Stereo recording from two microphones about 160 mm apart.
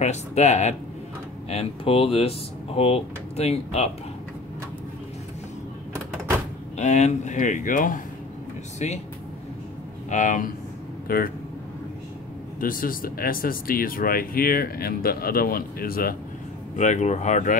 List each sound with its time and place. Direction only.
0.0 s speech: 45° left (ahead or behind)
6.8 s speech: 45° left (ahead or behind)
8.7 s speech: 45° left (ahead or behind)
10.0 s speech: 50° left (ahead or behind)
11.1 s speech: 65° left (ahead or behind)
12.5 s speech: 60° left (ahead or behind)
16.7 s speech: 45° left (ahead or behind)